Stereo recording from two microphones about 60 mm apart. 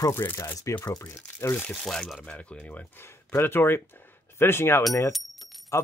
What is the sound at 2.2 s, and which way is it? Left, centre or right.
Speech, left.